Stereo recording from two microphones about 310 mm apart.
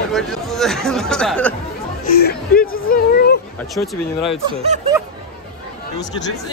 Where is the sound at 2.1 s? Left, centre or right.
Left.